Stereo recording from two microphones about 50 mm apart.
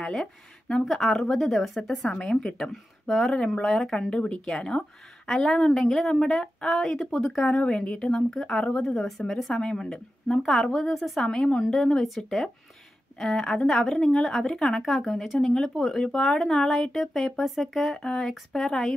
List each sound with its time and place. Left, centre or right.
0.0 s speech: centre
2.0 s speech: centre
2.7 s speech: centre
4.1 s a woman's voice: centre
5.2 s a woman's voice: centre
10.8 s speech: centre
11.2 s speech: centre